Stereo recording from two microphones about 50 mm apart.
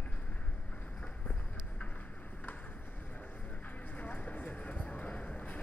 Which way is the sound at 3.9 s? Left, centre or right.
Left.